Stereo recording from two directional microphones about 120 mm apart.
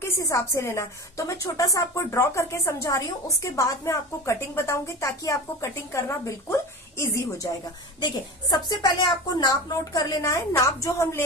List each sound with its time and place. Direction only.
0.0 s a woman's voice: 25° left (ahead or behind)